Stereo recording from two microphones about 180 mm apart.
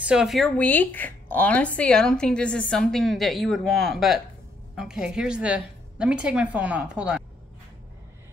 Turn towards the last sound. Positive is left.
turn(degrees=-5)  # may be behind; listen again after turning